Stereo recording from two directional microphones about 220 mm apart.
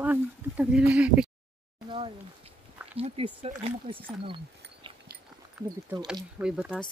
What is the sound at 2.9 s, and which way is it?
Speech, 25° right (ahead or behind).